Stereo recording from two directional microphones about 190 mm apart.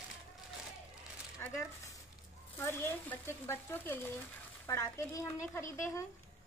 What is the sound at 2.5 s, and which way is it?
A woman's voice, 10° left (ahead or behind).